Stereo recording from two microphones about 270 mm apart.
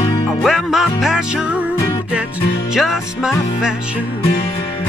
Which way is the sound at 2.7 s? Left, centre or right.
Centre.